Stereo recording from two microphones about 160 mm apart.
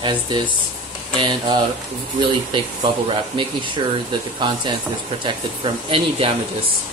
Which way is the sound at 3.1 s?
30° right (ahead or behind).